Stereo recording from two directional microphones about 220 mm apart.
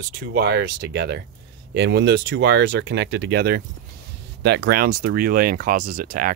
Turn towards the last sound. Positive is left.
turn(degrees=-40)  # may be behind; listen again after turning